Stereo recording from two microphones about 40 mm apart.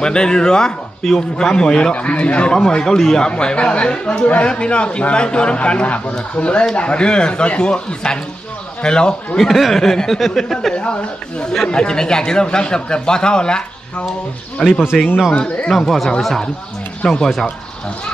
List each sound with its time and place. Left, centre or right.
0.0 s speech: left
2.0 s a man's voice: left
2.5 s speech: centre
3.3 s speech: left
9.4 s speech: centre
10.7 s speech: left
15.7 s speech: centre
17.0 s speech: centre